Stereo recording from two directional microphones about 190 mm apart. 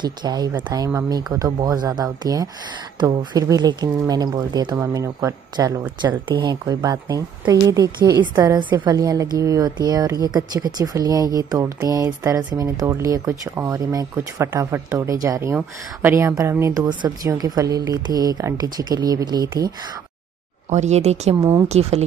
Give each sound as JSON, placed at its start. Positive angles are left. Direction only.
{"t": 0.0, "sound": "speech", "side_deg": -20}
{"t": 20.7, "sound": "speech", "side_deg": -35}
{"t": 21.4, "sound": "speech", "side_deg": -15}
{"t": 21.6, "sound": "speech", "side_deg": -35}